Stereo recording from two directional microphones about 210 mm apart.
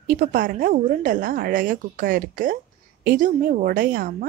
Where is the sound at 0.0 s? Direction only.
40° right (ahead or behind).